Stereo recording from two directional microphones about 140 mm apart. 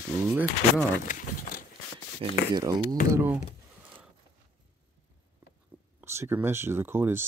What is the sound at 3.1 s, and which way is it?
Speech, 15° right (ahead or behind).